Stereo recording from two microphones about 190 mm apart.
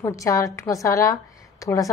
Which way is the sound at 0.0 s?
15° left (ahead or behind).